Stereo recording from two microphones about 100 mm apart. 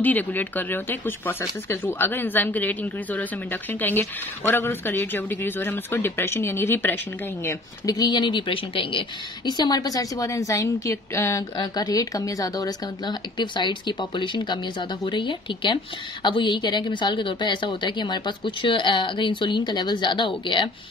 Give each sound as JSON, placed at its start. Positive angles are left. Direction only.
{"t": 0.0, "sound": "speech", "side_deg": 15}
{"t": 7.4, "sound": "speech", "side_deg": 40}
{"t": 9.5, "sound": "a woman's voice", "side_deg": 45}
{"t": 11.5, "sound": "speech", "side_deg": 45}